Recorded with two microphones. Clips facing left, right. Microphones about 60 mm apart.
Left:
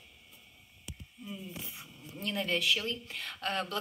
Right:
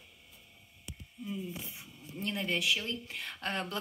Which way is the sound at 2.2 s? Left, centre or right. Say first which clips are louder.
Left 1 dB; right.